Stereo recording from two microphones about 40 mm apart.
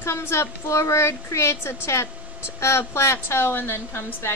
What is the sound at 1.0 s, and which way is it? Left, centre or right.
A woman's voice, left.